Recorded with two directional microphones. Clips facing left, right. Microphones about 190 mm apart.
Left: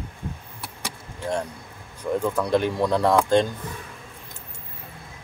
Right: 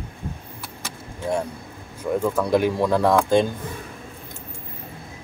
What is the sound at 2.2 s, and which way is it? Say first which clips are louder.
Speech: right 3 dB; 5° right (ahead or behind).